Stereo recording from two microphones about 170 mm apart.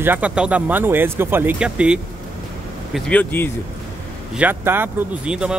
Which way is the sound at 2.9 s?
10° left (ahead or behind).